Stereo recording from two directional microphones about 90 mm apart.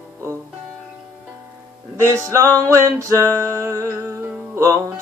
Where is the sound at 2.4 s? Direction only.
20° left (ahead or behind).